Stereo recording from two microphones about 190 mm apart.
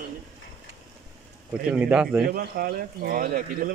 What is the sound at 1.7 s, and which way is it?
Speech, 5° right (ahead or behind).